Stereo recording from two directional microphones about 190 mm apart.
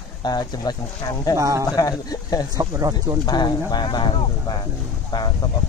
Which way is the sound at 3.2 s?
20° left (ahead or behind).